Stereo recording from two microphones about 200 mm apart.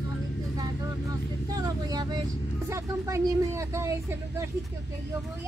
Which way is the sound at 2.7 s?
15° right (ahead or behind).